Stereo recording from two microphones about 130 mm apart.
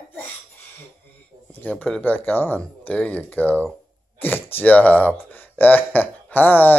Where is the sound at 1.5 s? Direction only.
10° left (ahead or behind).